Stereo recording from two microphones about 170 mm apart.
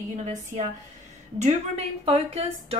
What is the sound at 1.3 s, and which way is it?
A woman's voice, 40° right (ahead or behind).